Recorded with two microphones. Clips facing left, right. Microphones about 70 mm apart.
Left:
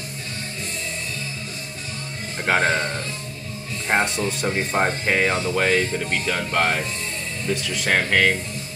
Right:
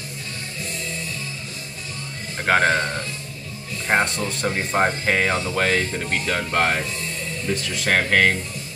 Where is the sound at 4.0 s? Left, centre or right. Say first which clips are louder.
Even; centre.